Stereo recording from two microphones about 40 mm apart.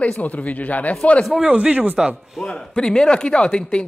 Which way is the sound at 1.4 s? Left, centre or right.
Right.